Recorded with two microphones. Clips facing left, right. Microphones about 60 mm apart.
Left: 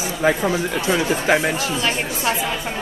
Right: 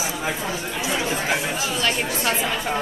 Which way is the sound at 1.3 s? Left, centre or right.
Left.